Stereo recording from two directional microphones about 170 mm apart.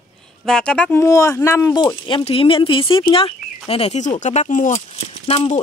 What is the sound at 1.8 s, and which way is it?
Speech, 30° left (ahead or behind).